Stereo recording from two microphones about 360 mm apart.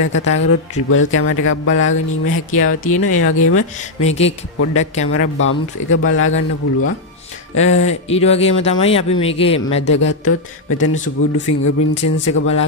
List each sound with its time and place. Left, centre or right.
0.0 s speech: left
3.7 s speech: centre
5.0 s speech: left
8.1 s speech: centre
9.9 s speech: left